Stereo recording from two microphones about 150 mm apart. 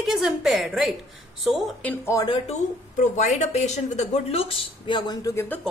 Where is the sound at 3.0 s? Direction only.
55° left (ahead or behind); by 5.6 s 20° left (ahead or behind).